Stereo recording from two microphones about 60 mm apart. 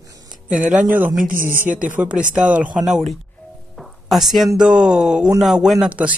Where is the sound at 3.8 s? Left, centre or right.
Centre.